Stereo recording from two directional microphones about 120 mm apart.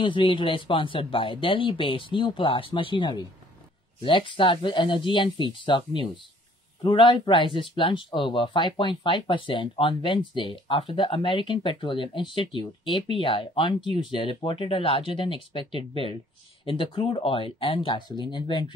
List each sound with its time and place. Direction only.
0.0 s speech: 45° left (ahead or behind)